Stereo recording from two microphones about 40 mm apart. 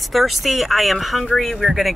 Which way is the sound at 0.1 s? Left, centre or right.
Centre.